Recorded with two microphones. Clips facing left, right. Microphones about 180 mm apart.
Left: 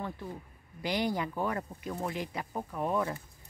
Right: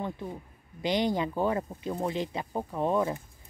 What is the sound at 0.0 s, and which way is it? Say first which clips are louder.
Speech: right 4 dB; 20° right (ahead or behind).